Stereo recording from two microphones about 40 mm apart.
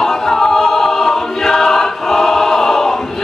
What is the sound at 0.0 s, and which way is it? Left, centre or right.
Choir, centre.